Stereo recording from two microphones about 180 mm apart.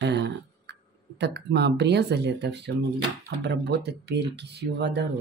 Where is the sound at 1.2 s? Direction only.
70° right (ahead or behind).